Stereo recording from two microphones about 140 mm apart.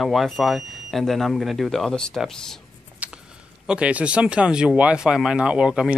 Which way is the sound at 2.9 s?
10° right (ahead or behind).